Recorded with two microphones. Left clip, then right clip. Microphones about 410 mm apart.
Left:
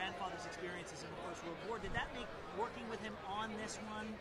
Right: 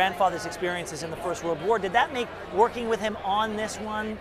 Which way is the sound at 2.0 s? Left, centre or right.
Right.